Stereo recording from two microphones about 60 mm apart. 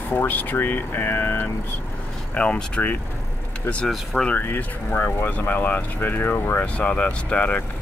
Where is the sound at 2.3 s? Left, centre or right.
Centre.